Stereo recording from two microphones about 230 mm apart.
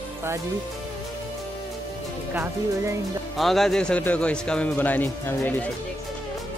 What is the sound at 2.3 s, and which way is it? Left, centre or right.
Speech, centre.